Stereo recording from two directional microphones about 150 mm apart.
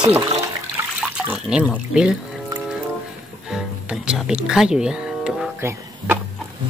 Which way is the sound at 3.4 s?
5° right (ahead or behind).